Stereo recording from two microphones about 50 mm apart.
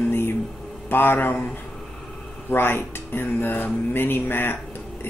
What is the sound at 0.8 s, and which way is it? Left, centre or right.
Speech, left.